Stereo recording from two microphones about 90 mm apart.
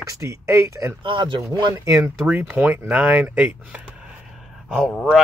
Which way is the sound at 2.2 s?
15° right (ahead or behind).